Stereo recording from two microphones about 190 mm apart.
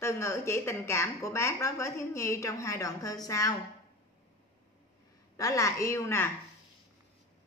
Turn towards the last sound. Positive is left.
turn(degrees=15)  # may be behind; listen again after turning